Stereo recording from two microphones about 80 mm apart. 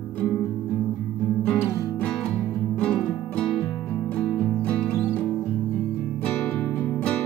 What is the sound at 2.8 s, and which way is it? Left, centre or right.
Music, centre.